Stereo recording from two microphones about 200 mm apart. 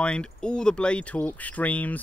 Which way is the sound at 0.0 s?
5° left (ahead or behind).